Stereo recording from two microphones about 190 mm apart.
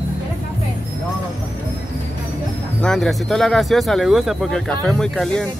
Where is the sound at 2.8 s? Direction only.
5° left (ahead or behind).